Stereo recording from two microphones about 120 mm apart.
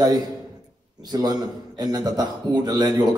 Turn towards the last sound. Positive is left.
turn(degrees=-35)  # may be behind; listen again after turning